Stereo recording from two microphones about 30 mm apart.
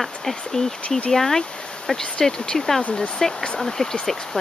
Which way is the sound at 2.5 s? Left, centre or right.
Centre.